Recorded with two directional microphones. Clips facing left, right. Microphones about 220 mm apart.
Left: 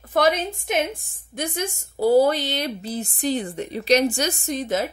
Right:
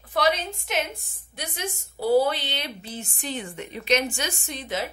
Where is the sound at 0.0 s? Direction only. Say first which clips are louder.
Left 4 dB; 45° left (ahead or behind).